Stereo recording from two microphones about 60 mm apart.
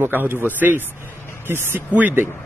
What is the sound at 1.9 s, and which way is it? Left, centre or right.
Speech, right.